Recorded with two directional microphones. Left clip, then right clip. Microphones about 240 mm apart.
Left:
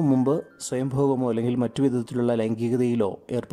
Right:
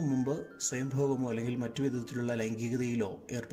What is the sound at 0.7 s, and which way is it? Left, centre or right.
Speech, left.